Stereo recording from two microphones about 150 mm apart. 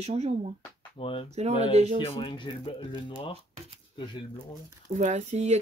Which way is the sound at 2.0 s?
35° left (ahead or behind).